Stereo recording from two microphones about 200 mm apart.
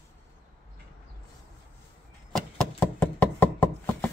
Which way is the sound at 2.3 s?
5° left (ahead or behind).